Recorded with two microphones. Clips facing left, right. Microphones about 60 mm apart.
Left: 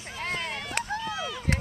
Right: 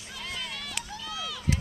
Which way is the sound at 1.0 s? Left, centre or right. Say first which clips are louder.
Left 5 dB; left.